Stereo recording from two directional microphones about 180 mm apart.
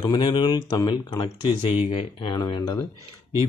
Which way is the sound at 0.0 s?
25° left (ahead or behind).